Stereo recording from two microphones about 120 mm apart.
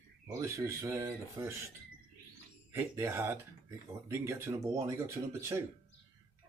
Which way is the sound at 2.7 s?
20° right (ahead or behind).